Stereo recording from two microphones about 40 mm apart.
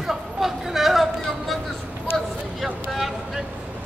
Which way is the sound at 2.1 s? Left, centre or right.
Centre.